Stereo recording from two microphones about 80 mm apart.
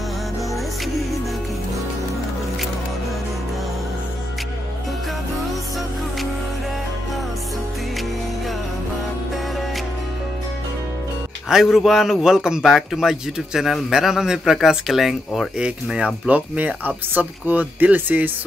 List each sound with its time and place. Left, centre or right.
11.4 s a man's voice: centre; by 18.3 s right